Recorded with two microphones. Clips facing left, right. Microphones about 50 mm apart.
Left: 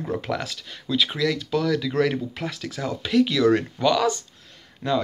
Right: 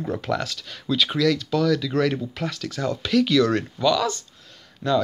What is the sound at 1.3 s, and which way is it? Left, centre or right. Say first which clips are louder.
Speech: right 2 dB; left.